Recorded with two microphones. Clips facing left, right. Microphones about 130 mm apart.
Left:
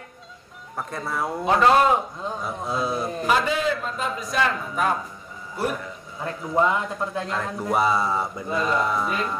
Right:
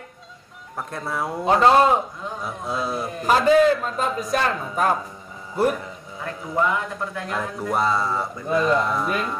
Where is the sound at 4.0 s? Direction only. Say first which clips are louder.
Right 2 dB; 40° right (ahead or behind).